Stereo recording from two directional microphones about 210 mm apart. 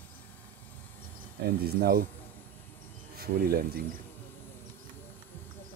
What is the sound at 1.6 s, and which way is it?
Speech, 45° right (ahead or behind).